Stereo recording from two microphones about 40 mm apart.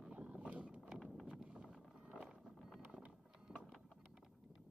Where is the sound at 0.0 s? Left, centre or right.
Right.